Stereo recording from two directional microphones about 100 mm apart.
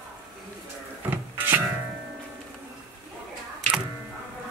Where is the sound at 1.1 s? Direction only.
20° right (ahead or behind).